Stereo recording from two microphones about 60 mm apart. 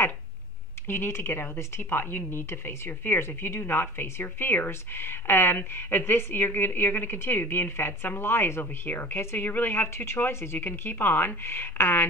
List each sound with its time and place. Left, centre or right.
0.8 s speech: left